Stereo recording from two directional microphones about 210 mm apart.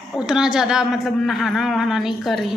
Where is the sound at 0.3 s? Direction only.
5° right (ahead or behind).